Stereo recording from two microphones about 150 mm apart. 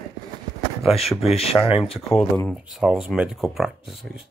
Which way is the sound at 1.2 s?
40° left (ahead or behind).